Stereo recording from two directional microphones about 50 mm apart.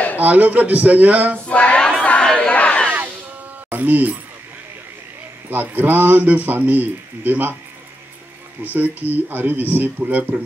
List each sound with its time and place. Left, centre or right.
0.2 s speech: right
1.5 s a sound: left
2.2 s battle cry: centre
2.5 s crowd: left
3.7 s speech: right
5.5 s speech: right
8.7 s speech: right